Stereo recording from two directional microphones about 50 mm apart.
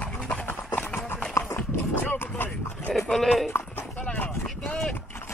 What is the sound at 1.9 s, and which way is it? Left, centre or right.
Vehicle, left.